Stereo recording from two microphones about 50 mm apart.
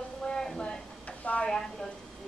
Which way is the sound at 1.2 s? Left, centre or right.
Left.